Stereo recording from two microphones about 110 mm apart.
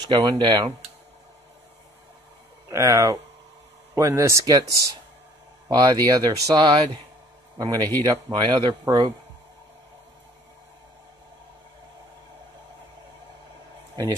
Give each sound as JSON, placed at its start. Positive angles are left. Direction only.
{"t": 0.0, "sound": "speech", "side_deg": -40}
{"t": 2.7, "sound": "a man's voice", "side_deg": -30}